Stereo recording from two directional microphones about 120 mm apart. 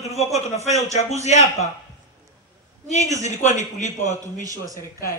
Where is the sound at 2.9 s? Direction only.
75° left (ahead or behind).